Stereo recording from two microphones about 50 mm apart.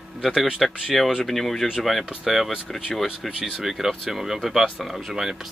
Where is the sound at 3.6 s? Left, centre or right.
Centre.